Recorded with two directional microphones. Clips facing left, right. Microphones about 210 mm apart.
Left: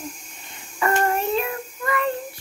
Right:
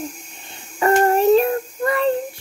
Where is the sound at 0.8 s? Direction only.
35° right (ahead or behind).